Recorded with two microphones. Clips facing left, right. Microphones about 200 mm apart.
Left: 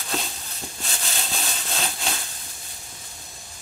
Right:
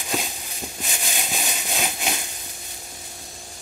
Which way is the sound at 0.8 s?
15° right (ahead or behind).